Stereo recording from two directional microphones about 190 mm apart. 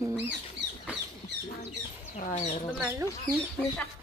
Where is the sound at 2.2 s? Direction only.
45° left (ahead or behind).